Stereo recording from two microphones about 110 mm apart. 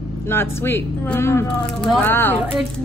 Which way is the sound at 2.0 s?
20° left (ahead or behind).